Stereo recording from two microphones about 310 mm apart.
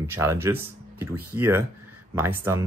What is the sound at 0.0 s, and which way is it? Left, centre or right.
Speech, centre.